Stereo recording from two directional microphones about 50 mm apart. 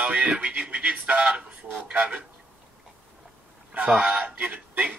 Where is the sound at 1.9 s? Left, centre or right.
Right.